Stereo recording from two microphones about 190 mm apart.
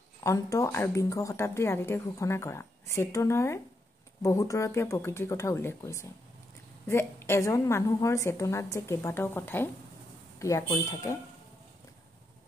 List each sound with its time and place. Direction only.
0.2 s a woman's voice: 15° left (ahead or behind)